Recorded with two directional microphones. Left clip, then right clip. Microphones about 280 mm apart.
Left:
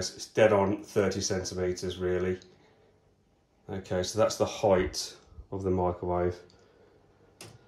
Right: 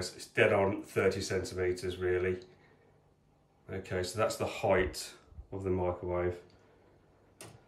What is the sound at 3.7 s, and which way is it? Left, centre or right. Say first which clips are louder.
Speech: left 4 dB; centre.